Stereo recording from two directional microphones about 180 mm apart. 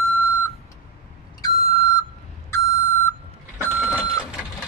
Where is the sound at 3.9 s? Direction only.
15° left (ahead or behind).